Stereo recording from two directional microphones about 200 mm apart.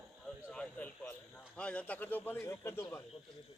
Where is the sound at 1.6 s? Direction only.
5° left (ahead or behind).